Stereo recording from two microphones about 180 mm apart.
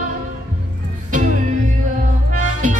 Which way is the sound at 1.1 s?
45° right (ahead or behind).